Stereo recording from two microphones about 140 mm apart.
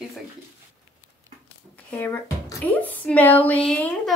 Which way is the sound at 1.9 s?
15° left (ahead or behind).